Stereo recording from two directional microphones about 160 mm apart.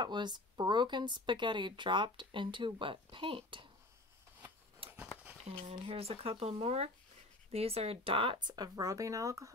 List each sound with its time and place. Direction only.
0.0 s speech: 30° right (ahead or behind)
4.8 s a sound: 35° right (ahead or behind)
5.7 s speech: 40° right (ahead or behind); by 9.5 s 20° right (ahead or behind)